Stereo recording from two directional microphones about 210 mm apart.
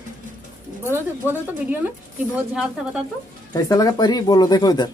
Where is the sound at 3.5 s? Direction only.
15° left (ahead or behind).